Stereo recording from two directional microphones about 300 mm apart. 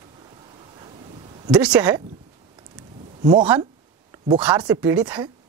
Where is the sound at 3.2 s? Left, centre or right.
Centre.